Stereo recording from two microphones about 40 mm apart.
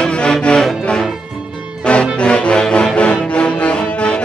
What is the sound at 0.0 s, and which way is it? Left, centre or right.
Music, left.